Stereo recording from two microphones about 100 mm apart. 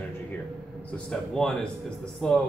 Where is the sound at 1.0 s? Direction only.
5° left (ahead or behind).